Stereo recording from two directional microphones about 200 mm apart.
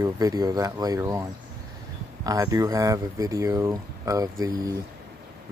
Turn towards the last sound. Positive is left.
turn(degrees=-15)  # may be behind; listen again after turning